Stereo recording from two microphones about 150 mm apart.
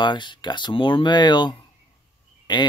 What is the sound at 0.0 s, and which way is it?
Speech, 30° left (ahead or behind).